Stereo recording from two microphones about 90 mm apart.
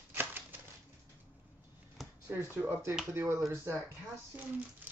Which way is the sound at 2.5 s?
25° right (ahead or behind).